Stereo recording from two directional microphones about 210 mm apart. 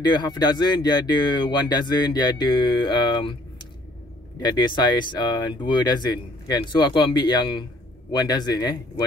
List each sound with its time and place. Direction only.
0.0 s speech: 20° left (ahead or behind)